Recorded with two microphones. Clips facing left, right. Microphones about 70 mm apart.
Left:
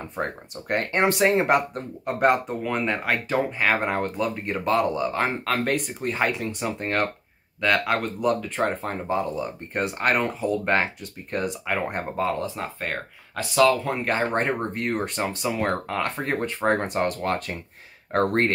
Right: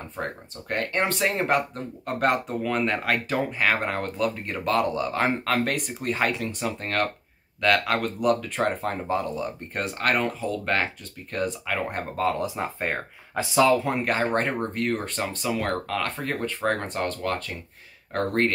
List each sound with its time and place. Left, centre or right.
0.2 s speech: left
2.0 s speech: centre
10.2 s speech: centre
12.4 s speech: centre
14.0 s speech: centre
16.2 s speech: left
17.2 s speech: left